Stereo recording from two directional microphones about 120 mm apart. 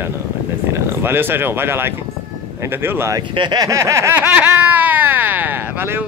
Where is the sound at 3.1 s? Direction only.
35° right (ahead or behind); by 6.0 s 15° right (ahead or behind).